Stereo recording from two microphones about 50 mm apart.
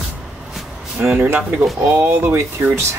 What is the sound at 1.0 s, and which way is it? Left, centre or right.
Speech, right.